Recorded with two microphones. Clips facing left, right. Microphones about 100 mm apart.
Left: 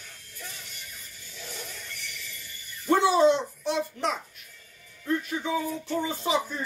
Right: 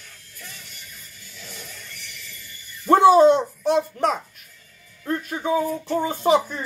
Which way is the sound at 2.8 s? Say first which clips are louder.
Right 7 dB; 45° right (ahead or behind).